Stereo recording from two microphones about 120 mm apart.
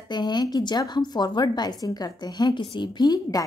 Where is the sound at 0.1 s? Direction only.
35° left (ahead or behind).